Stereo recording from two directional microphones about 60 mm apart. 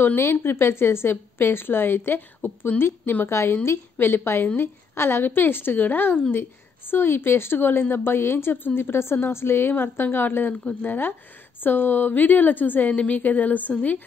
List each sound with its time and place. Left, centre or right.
0.0 s speech: left
3.3 s a woman's voice: left